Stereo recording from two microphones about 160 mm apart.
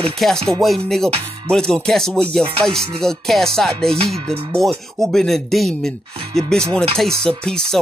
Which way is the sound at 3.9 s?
40° right (ahead or behind).